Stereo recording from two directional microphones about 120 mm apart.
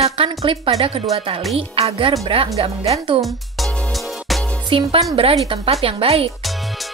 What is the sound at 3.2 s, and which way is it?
Music, centre (ahead or behind).